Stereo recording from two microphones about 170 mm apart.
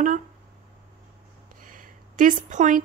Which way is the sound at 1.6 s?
50° right (ahead or behind).